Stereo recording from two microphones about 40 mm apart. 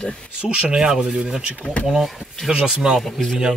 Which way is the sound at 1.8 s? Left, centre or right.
Centre.